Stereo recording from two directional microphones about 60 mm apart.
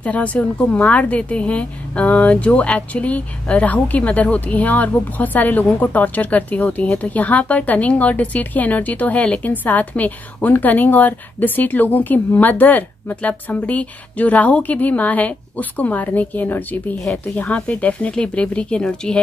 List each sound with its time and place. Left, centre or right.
0.0 s speech: left